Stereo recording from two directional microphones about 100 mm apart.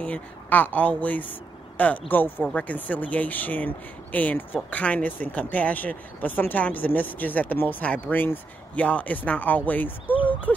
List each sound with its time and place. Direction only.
0.0 s speech: 15° left (ahead or behind)